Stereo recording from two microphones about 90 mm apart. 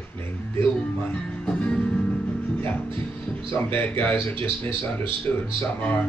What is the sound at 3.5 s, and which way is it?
Speech, 20° left (ahead or behind).